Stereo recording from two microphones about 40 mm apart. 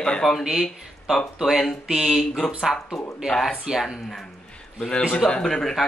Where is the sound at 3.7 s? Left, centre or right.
Right.